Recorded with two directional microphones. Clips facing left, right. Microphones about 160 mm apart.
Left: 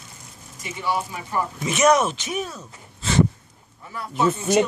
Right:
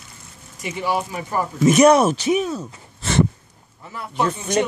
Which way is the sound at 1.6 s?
35° right (ahead or behind).